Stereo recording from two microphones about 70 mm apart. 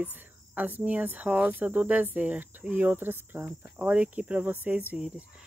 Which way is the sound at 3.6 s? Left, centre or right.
Centre.